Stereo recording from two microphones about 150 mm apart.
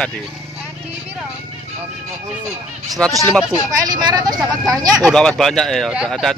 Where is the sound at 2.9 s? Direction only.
Centre (ahead or behind).